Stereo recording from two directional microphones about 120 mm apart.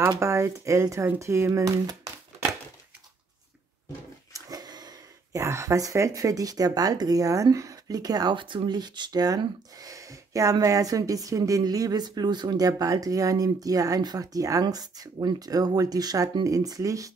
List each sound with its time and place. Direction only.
0.1 s speech: 25° right (ahead or behind)
4.3 s speech: 30° right (ahead or behind)